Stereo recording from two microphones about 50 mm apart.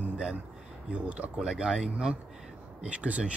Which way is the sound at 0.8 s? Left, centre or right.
Right.